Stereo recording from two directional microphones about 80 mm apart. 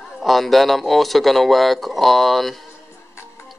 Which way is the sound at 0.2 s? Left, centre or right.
Centre.